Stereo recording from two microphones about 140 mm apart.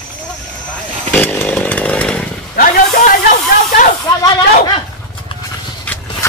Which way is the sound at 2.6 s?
80° left.